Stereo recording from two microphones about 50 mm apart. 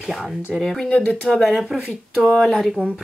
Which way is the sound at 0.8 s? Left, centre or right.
Left.